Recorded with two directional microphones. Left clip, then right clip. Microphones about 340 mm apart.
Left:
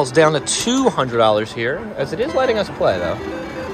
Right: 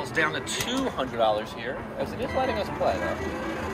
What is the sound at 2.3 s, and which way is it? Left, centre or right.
Speech, centre.